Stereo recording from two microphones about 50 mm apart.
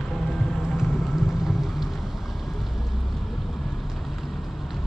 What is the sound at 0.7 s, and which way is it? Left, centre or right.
Rain, centre.